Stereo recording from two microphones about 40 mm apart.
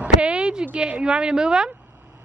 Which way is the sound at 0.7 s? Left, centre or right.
Right.